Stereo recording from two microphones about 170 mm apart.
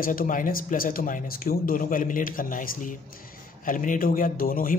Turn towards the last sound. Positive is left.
turn(degrees=55)  # may be behind; listen again after turning